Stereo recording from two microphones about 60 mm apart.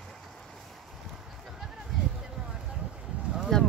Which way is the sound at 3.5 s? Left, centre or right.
Centre.